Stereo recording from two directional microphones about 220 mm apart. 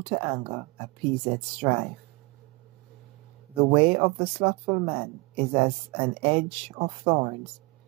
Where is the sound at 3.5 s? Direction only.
25° right (ahead or behind).